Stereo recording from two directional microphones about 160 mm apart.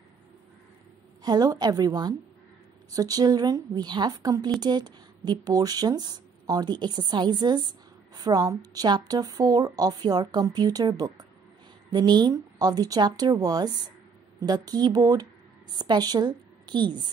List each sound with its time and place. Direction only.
1.2 s a woman's voice: 25° right (ahead or behind)